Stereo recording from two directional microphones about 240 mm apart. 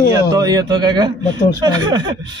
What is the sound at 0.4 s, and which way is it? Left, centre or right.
Speech, centre.